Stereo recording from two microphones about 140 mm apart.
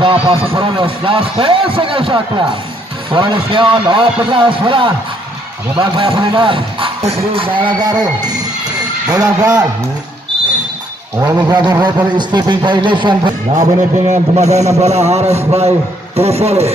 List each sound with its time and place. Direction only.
0.0 s speech: 40° right (ahead or behind)
11.1 s speech: 25° right (ahead or behind)
13.6 s a man's voice: 60° right (ahead or behind)